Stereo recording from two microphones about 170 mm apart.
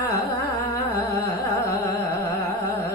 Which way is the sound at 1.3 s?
20° left (ahead or behind).